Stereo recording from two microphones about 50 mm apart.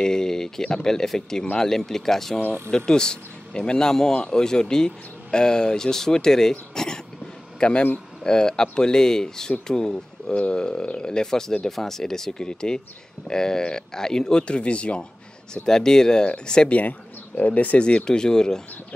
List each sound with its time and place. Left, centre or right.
0.0 s a sound: centre
0.8 s speech: centre
6.7 s a sound: centre
7.6 s speech: left
8.2 s speech: centre
15.5 s speech: centre
17.4 s speech: left; by 18.6 s centre